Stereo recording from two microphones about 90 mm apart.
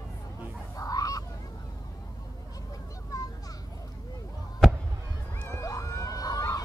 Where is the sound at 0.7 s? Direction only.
45° left (ahead or behind).